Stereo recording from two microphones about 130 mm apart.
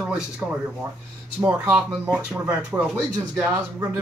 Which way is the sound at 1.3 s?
10° right (ahead or behind).